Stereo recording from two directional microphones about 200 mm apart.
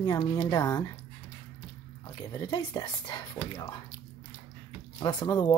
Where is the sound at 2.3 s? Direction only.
20° left (ahead or behind).